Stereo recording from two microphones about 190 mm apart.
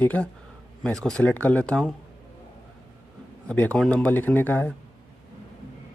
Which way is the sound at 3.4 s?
5° left (ahead or behind).